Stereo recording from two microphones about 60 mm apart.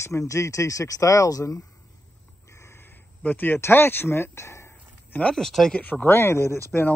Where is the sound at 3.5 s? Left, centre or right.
Left.